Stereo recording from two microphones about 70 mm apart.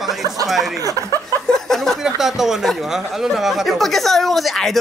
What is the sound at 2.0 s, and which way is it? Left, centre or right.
Speech, centre.